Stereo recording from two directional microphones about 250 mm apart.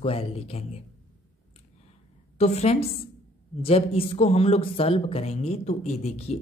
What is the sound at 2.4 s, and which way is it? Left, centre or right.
Speech, left.